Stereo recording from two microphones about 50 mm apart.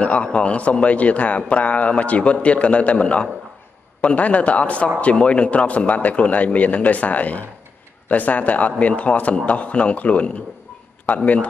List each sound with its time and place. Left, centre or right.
0.0 s a man's voice: left